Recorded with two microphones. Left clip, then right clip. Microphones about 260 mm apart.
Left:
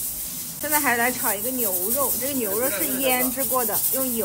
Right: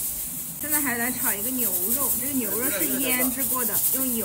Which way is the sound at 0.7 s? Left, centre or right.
Centre.